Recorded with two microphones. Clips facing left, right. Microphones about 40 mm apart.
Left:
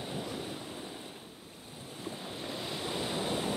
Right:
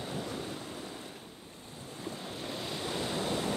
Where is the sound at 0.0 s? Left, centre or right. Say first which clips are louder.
Right 1 dB; centre.